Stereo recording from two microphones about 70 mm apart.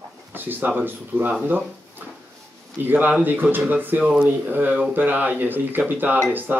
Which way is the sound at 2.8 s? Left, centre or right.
Right.